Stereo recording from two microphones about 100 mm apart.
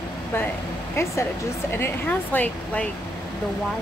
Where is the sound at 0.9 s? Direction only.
25° left (ahead or behind).